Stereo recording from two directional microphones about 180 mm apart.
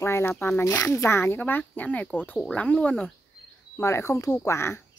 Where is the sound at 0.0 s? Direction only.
15° left (ahead or behind).